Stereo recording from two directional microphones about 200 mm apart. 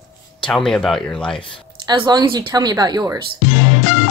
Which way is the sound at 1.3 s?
25° left (ahead or behind).